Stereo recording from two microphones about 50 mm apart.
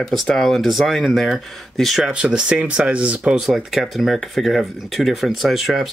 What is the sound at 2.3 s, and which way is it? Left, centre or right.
Speech, right.